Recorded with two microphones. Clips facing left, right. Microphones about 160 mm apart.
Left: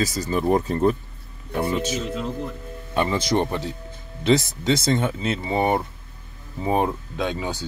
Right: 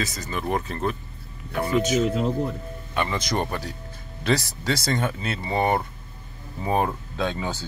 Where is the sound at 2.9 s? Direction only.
30° left (ahead or behind).